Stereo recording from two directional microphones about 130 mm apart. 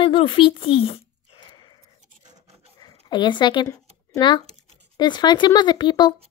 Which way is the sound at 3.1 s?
35° left (ahead or behind).